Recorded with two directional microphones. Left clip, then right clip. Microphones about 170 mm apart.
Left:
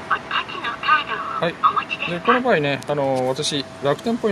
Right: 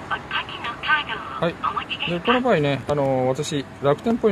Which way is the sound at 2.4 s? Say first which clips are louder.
Left 1 dB; 20° right (ahead or behind).